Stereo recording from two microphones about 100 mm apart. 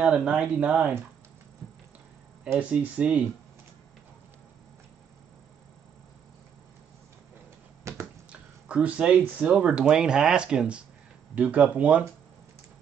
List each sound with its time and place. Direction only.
0.0 s speech: 10° right (ahead or behind)
2.4 s speech: 15° right (ahead or behind)
7.9 s finger snapping: 30° right (ahead or behind)
8.3 s a sound: 10° right (ahead or behind)
9.4 s speech: 10° right (ahead or behind)